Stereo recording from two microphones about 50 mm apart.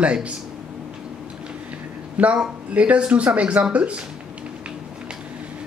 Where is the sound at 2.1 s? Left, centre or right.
Right.